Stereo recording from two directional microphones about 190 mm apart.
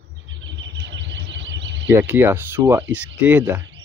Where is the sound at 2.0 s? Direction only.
10° right (ahead or behind).